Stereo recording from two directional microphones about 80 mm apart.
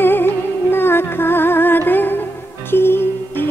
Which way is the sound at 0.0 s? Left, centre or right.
Left.